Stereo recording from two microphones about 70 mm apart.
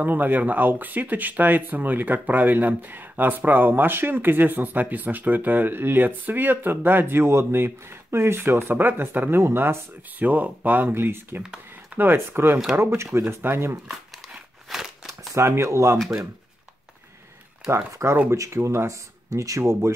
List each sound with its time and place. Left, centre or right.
0.0 s speech: right
13.8 s a sound: centre
15.3 s speech: right
17.6 s speech: right
19.6 s speech: right